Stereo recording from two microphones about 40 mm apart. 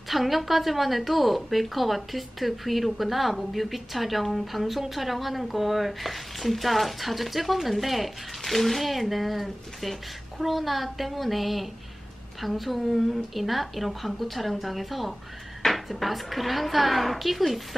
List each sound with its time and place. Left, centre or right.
0.1 s a woman's voice: centre